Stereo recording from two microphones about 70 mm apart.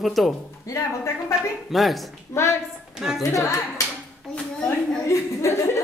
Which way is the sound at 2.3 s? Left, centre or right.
Left.